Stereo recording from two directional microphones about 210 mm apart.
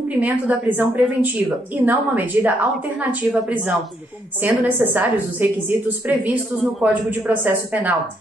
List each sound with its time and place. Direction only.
0.2 s a woman's voice: 5° right (ahead or behind)